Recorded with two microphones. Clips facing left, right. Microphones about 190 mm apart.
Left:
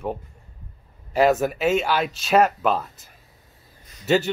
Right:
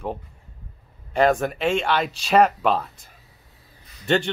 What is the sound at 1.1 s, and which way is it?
Speech, 5° left (ahead or behind).